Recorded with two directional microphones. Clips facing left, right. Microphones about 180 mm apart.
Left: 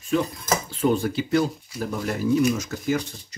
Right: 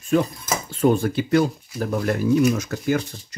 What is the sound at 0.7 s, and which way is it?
Speech, 50° right (ahead or behind).